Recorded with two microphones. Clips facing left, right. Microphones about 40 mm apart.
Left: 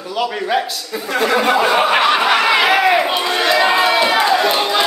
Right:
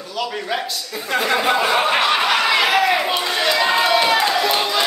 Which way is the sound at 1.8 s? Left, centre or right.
Centre.